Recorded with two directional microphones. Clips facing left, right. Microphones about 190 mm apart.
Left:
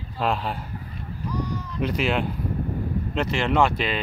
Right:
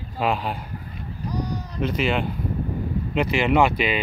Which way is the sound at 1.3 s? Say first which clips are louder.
Right 1 dB; 35° right (ahead or behind).